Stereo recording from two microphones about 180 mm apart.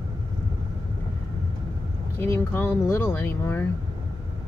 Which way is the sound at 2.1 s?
10° left (ahead or behind).